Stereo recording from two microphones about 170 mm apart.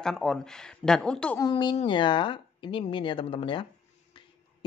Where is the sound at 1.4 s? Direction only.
25° left (ahead or behind).